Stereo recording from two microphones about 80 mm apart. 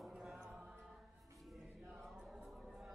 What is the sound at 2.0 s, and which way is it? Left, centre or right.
Chant, centre.